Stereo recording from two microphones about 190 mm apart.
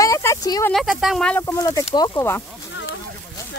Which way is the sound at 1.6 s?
20° left (ahead or behind).